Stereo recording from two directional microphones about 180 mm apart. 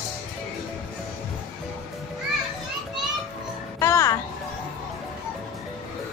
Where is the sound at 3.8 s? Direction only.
15° left (ahead or behind).